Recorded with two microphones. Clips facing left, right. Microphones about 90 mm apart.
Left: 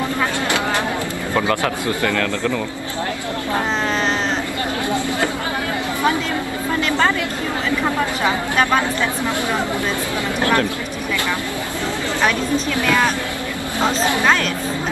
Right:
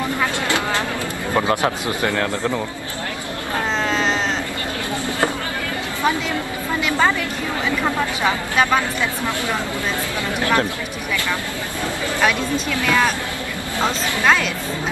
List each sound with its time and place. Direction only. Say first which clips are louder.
1.3 s speech: right 1 dB; 20° right (ahead or behind)
10.4 s speech: left 1 dB; 20° right (ahead or behind)
12.7 s speech: right 1 dB; 20° left (ahead or behind)